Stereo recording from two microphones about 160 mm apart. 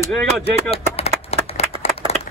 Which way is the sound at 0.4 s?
40° left (ahead or behind).